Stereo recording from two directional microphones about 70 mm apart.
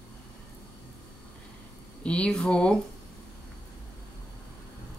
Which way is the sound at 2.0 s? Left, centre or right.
Centre.